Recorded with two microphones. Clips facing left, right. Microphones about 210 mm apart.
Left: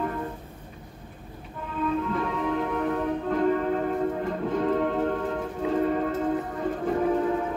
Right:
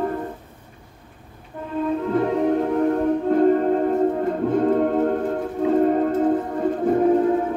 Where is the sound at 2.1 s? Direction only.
40° right (ahead or behind).